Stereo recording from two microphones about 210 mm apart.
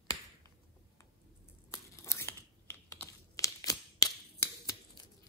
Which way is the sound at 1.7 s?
10° left (ahead or behind).